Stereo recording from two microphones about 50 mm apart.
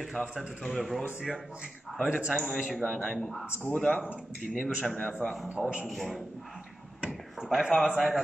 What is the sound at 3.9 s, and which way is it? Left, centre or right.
Speech, right.